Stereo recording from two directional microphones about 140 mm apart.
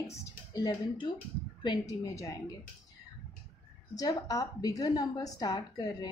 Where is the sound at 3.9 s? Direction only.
25° left (ahead or behind).